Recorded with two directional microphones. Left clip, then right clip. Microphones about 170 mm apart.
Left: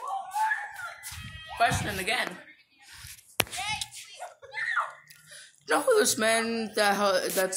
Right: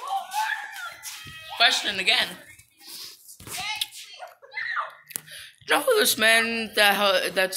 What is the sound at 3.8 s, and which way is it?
Hands, 5° left (ahead or behind).